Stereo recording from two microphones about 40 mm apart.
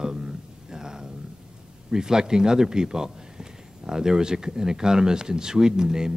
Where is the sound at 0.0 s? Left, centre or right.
Centre.